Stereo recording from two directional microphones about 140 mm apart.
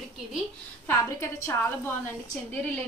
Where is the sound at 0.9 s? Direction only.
20° left (ahead or behind).